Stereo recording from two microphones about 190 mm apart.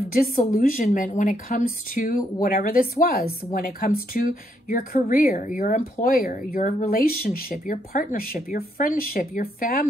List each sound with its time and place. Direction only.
0.4 s speech: 45° left (ahead or behind)